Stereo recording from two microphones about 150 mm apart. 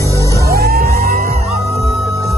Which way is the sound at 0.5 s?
90° right.